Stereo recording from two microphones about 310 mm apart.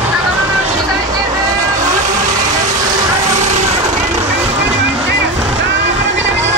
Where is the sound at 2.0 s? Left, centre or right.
Right.